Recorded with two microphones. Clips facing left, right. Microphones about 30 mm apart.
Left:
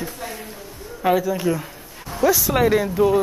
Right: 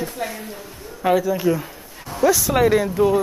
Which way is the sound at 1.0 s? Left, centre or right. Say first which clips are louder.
Right 1 dB; centre.